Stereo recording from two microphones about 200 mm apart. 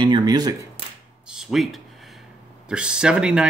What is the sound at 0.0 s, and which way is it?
Speech, 20° right (ahead or behind).